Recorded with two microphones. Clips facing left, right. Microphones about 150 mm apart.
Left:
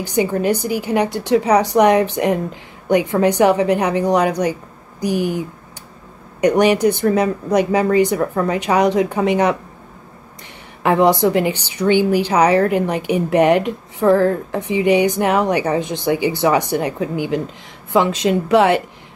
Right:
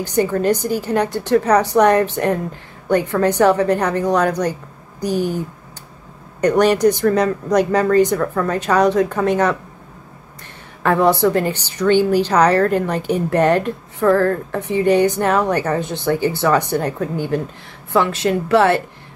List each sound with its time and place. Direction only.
0.0 s a woman's voice: 10° left (ahead or behind)
10.8 s a woman's voice: 15° left (ahead or behind)